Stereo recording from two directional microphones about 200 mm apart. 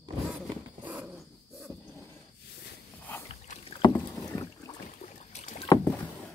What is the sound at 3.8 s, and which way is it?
Rowboat, 15° left (ahead or behind).